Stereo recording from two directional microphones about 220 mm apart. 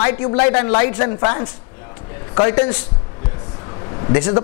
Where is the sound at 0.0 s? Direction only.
20° left (ahead or behind).